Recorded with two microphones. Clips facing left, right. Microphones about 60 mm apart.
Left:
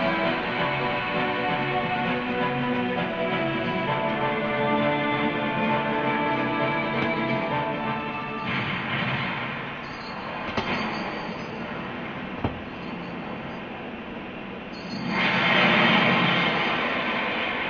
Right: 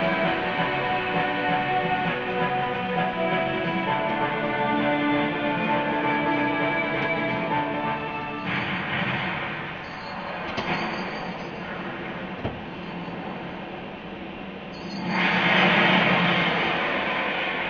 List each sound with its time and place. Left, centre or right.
0.0 s music: centre
15.0 s vehicle: centre
16.0 s vehicle: centre
16.3 s vehicle: centre